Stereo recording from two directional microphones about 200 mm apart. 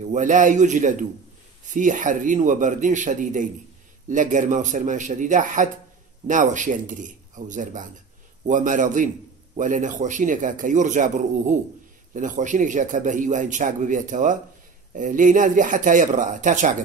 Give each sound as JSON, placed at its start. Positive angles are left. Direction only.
{"t": 0.1, "sound": "speech", "side_deg": -40}